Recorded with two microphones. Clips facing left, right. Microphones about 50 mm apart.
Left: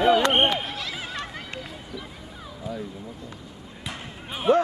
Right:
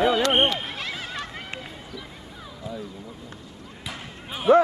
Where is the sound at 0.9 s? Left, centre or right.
Centre.